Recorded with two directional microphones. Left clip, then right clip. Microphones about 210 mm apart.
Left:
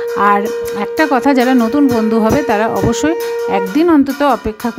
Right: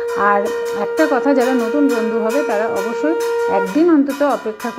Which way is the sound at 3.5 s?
65° left (ahead or behind).